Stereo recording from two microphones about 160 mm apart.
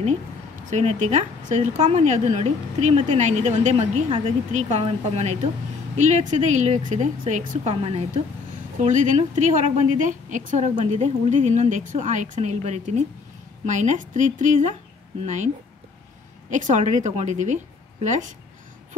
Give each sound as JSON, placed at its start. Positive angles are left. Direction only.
{"t": 0.7, "sound": "speech", "side_deg": -45}
{"t": 7.7, "sound": "speech", "side_deg": -35}
{"t": 8.8, "sound": "speech", "side_deg": -50}